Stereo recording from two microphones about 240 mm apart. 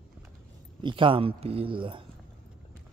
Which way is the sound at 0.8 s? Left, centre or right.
Centre.